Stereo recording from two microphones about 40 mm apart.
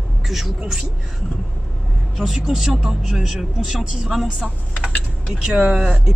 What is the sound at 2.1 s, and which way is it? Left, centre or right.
Speech, centre.